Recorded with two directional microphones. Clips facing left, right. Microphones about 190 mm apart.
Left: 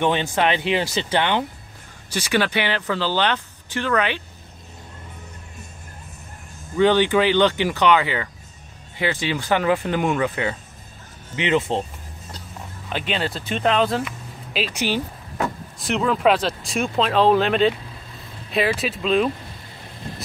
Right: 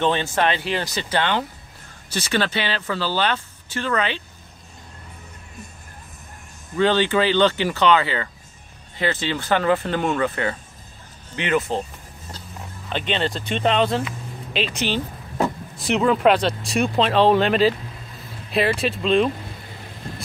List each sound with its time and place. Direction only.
0.0 s speech: 15° left (ahead or behind)
6.8 s speech: 15° left (ahead or behind)
12.9 s speech: 5° left (ahead or behind)
15.4 s speech: centre (ahead or behind)